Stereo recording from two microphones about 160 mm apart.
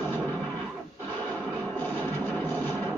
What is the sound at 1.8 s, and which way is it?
Music, 10° left (ahead or behind).